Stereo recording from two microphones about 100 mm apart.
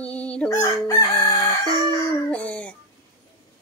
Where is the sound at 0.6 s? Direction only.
40° left (ahead or behind).